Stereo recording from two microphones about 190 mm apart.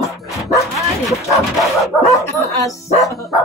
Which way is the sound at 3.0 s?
Centre (ahead or behind).